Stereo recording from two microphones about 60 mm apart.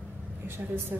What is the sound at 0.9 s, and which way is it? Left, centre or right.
Speech, right.